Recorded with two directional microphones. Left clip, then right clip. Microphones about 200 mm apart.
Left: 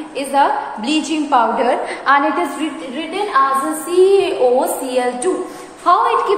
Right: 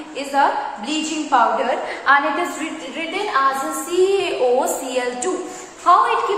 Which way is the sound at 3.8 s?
15° left (ahead or behind).